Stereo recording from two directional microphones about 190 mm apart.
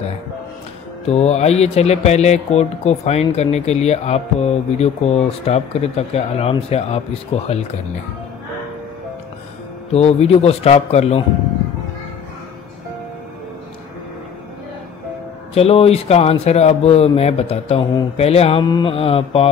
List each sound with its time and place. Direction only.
1.0 s speech: 35° left (ahead or behind)
9.9 s speech: 35° left (ahead or behind)
15.5 s speech: 30° left (ahead or behind)